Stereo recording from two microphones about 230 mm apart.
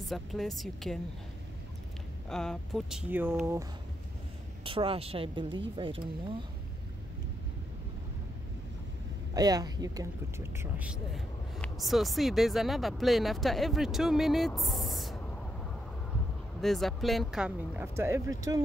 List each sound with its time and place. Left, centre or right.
0.0 s speech: centre
2.2 s speech: centre
4.6 s speech: right
9.3 s speech: centre
16.6 s speech: centre